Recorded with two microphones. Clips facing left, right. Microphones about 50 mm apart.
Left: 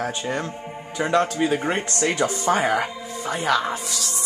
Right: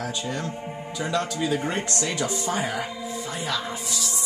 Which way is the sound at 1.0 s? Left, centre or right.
Left.